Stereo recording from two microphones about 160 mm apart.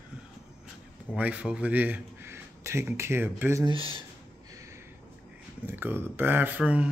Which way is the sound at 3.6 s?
35° right (ahead or behind).